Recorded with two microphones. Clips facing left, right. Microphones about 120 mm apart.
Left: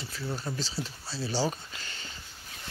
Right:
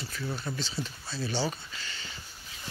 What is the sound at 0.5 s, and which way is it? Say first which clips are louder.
Speech: even; 35° left (ahead or behind).